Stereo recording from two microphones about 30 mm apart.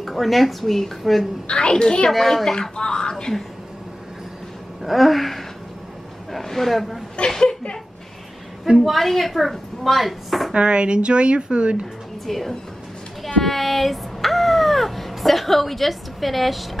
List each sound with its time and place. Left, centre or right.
0.0 s speech: centre
1.5 s a woman's voice: left
2.0 s a child's voice: centre
2.7 s speech: left
4.8 s speech: centre
7.2 s speech: left
8.8 s speech: centre
10.5 s a woman's voice: right
12.3 s speech: centre
13.4 s a sound: centre